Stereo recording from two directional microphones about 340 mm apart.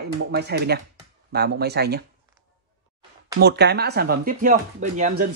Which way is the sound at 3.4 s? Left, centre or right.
Right.